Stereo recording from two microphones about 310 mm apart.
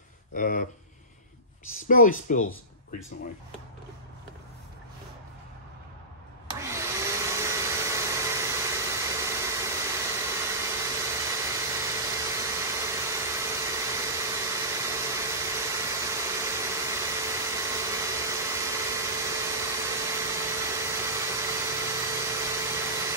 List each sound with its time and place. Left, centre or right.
0.3 s speech: left
1.9 s speech: left
6.6 s hair dryer: centre